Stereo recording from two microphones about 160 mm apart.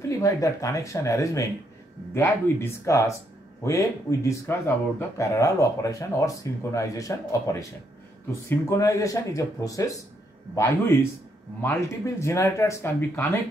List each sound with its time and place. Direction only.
0.2 s speech: 20° left (ahead or behind)